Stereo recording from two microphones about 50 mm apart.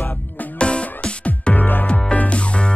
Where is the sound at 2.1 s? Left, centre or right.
Left.